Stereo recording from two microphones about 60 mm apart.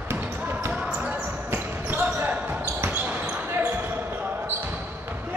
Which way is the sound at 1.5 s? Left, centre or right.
Right.